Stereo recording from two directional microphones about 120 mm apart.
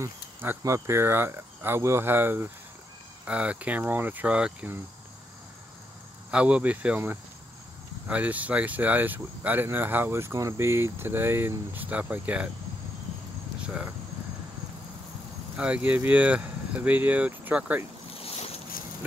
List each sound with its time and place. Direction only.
0.0 s speech: 20° right (ahead or behind)
6.3 s speech: 10° right (ahead or behind)
15.5 s speech: 10° right (ahead or behind)
18.1 s boat: 55° left (ahead or behind)